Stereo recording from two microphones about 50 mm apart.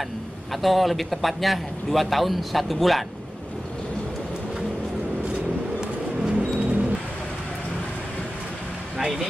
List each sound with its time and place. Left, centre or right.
0.5 s a man's voice: centre
5.8 s a sound: centre
8.9 s speech: centre